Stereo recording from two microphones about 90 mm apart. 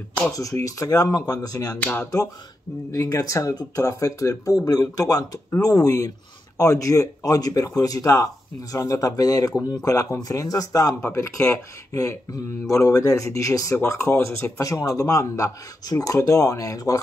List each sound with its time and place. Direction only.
0.3 s speech: 40° left (ahead or behind)
1.8 s speech: 20° left (ahead or behind)
2.9 s speech: 40° left (ahead or behind)
11.0 s speech: 30° left (ahead or behind)